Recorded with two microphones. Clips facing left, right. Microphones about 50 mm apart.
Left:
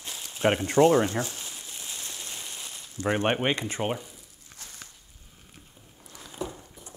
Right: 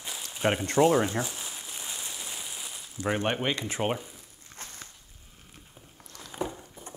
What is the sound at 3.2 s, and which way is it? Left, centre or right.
Speech, left.